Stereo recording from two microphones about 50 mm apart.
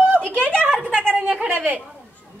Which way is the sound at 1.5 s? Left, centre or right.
Right.